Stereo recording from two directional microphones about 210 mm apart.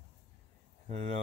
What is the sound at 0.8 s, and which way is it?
Speech, 35° right (ahead or behind).